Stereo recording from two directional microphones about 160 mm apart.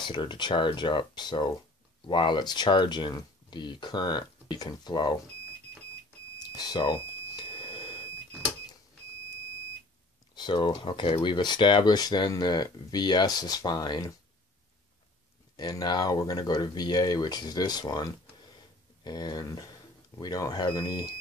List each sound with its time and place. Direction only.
0.0 s speech: 30° left (ahead or behind)
6.4 s telephone: 25° left (ahead or behind)
10.3 s speech: 30° left (ahead or behind)
15.5 s speech: 25° left (ahead or behind)